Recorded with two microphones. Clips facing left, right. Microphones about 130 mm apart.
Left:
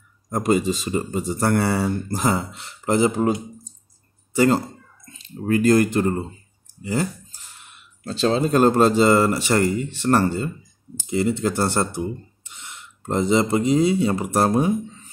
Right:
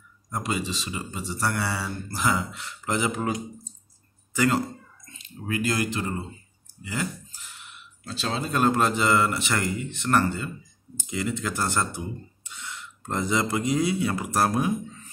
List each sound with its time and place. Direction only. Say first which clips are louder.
0.3 s speech: left 9 dB; 45° left (ahead or behind)
2.0 s speech: left 4 dB; 40° left (ahead or behind)
6.8 s a sound: left 7 dB; 35° left (ahead or behind)
8.0 s speech: left 10 dB; 35° left (ahead or behind)
12.4 s speech: right 2 dB; 25° left (ahead or behind)